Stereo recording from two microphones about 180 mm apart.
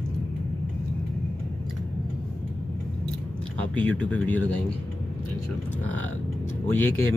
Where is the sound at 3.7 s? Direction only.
10° left (ahead or behind).